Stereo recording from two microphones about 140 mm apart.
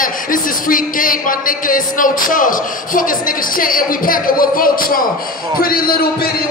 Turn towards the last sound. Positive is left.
turn(degrees=90)